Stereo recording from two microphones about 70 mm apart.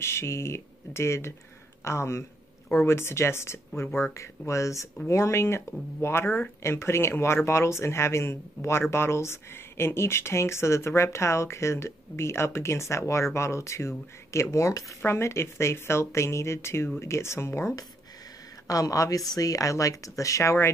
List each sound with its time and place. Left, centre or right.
0.0 s speech: left
15.0 s speech: left
18.7 s a woman's voice: left